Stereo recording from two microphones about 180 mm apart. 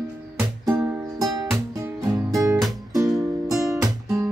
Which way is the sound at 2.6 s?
Centre (ahead or behind).